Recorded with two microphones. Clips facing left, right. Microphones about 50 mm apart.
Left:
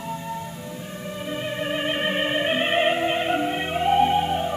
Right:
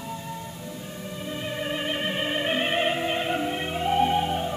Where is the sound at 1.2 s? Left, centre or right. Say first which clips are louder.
Left 3 dB; centre.